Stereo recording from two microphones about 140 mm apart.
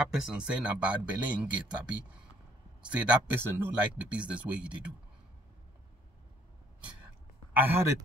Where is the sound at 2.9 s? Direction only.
10° right (ahead or behind).